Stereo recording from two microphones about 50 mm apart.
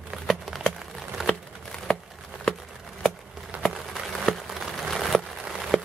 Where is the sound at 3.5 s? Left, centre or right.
Right.